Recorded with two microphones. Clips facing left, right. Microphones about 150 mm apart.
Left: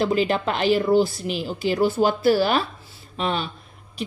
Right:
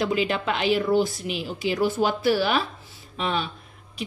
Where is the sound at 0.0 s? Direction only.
40° left (ahead or behind).